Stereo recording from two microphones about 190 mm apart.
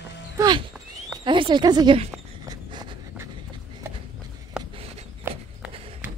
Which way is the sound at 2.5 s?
20° right (ahead or behind).